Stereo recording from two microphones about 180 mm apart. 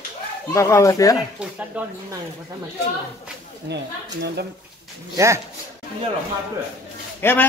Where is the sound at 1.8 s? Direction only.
5° right (ahead or behind).